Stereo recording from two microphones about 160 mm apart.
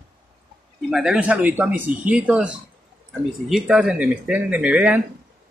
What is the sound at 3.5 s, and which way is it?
Speech, 5° right (ahead or behind).